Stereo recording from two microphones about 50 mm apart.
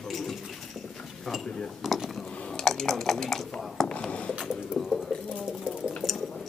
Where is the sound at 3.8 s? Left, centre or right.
Centre.